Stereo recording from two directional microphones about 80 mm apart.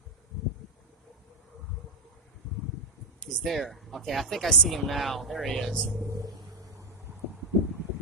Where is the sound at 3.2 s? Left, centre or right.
Centre.